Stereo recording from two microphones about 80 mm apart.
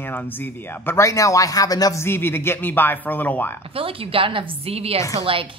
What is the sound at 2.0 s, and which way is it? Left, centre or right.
Speech, left.